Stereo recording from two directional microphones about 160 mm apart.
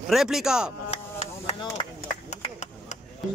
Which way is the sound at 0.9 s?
40° left (ahead or behind).